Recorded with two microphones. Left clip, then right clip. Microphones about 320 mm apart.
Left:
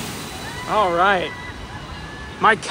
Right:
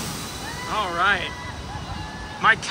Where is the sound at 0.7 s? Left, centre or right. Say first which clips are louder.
Left 5 dB; centre.